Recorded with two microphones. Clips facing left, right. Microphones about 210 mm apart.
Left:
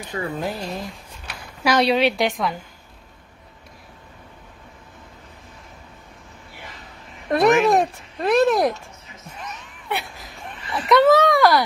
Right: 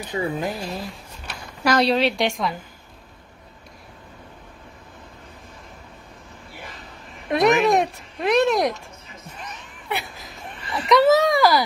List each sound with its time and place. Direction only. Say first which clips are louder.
0.1 s speech: right 1 dB; 15° right (ahead or behind); by 2.6 s centre (ahead or behind)
7.2 s speech: left 1 dB; centre (ahead or behind)
9.8 s a sound: left 1 dB; centre (ahead or behind)